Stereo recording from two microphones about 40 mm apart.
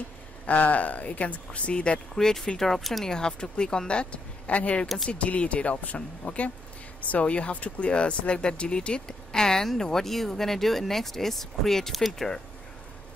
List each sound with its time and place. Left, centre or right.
0.5 s speech: left
2.1 s speech: centre
3.1 s speech: centre